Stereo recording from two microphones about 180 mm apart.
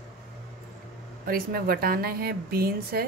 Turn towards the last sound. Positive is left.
turn(degrees=-55)  # may be behind; listen again after turning